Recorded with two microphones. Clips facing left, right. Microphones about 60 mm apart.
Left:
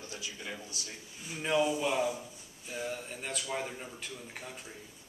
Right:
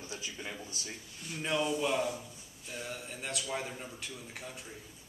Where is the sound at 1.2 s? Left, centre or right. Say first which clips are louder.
Left 3 dB; centre.